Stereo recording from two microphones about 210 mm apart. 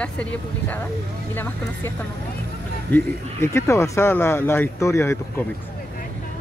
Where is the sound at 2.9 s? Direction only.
10° left (ahead or behind).